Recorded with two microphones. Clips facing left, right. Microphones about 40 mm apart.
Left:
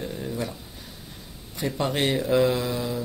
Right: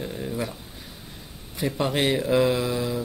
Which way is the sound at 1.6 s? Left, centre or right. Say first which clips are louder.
Right 1 dB; centre.